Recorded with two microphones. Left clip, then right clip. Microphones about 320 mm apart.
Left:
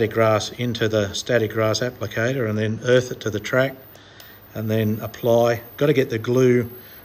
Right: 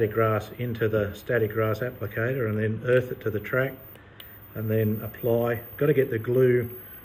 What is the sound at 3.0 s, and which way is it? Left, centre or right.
Speech, centre.